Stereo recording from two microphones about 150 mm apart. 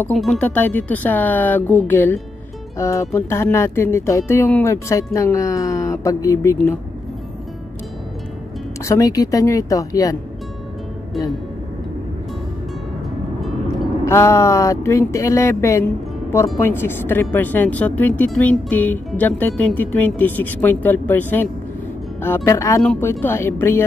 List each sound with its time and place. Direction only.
0.0 s speech: 5° left (ahead or behind)
8.8 s speech: 20° left (ahead or behind)
13.4 s vehicle: centre (ahead or behind)
14.0 s speech: 20° left (ahead or behind)
22.8 s speech: 5° left (ahead or behind)
23.0 s speech: 15° left (ahead or behind)